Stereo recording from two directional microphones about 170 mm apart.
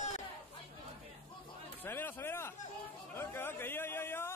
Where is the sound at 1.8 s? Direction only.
10° left (ahead or behind).